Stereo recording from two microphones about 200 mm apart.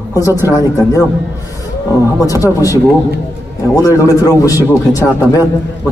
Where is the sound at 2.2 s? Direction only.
15° left (ahead or behind).